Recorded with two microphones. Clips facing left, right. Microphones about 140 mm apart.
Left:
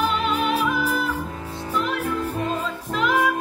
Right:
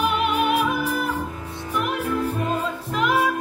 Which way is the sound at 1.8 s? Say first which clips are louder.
Right 2 dB; 10° right (ahead or behind).